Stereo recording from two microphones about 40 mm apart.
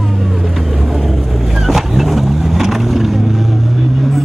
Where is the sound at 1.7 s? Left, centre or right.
Centre.